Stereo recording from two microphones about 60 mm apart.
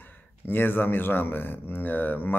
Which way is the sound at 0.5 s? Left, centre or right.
Left.